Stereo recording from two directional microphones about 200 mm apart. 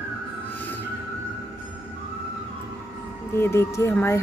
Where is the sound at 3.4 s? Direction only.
15° left (ahead or behind).